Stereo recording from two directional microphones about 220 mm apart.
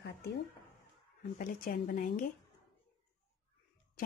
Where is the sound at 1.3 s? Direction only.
40° left (ahead or behind).